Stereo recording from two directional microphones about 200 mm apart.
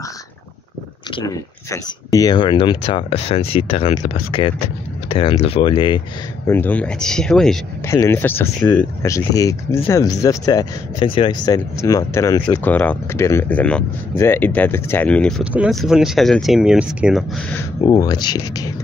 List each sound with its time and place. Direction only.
1.1 s speech: 20° left (ahead or behind)
6.4 s speech: 10° left (ahead or behind)
7.8 s speech: 15° left (ahead or behind)
12.6 s speech: 10° left (ahead or behind)
17.7 s speech: 20° left (ahead or behind)